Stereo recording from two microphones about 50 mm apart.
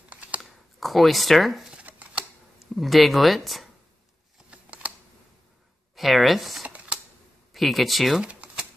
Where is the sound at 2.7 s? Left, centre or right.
Centre.